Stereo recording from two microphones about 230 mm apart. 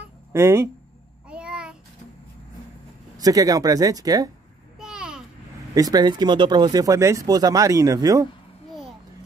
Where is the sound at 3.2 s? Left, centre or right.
Centre.